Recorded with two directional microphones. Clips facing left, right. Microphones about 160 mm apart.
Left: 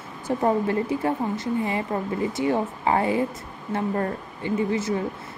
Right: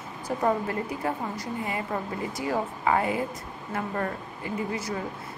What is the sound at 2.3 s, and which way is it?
A woman's voice, 25° left (ahead or behind).